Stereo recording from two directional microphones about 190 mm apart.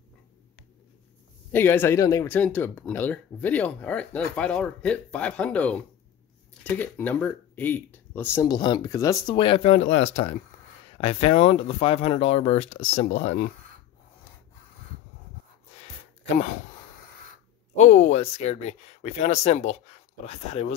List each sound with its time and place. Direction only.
1.5 s speech: 10° left (ahead or behind); by 13.5 s 35° left (ahead or behind)
17.7 s speech: 35° left (ahead or behind)